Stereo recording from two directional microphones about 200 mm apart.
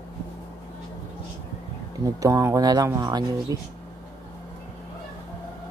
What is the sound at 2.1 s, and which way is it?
Speech, 15° right (ahead or behind).